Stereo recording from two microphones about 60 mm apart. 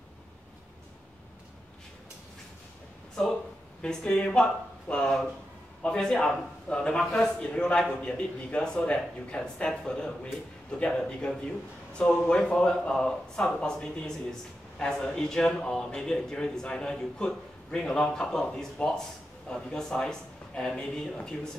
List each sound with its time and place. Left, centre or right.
3.8 s speech: centre